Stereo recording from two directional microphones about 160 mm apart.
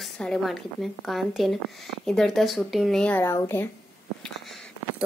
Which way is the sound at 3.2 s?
15° left (ahead or behind).